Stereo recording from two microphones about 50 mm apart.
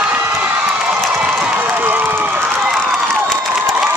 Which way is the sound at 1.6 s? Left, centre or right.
Right.